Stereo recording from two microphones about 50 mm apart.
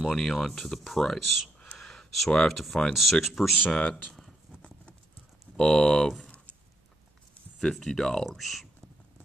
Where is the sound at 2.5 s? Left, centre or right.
Centre.